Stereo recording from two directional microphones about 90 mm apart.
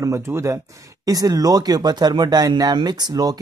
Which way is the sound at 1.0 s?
45° right (ahead or behind).